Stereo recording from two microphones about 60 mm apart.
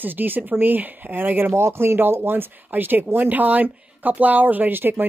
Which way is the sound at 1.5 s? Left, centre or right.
Right.